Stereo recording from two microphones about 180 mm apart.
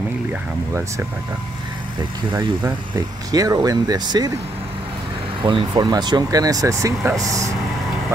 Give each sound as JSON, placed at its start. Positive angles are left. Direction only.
{"t": 0.3, "sound": "speech", "side_deg": -15}
{"t": 3.3, "sound": "speech", "side_deg": -20}
{"t": 5.4, "sound": "speech", "side_deg": -25}